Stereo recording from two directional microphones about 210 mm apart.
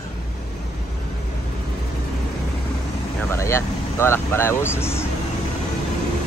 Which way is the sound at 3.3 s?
10° left (ahead or behind).